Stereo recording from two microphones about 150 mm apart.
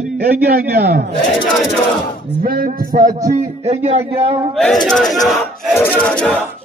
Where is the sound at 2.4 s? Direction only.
75° right (ahead or behind).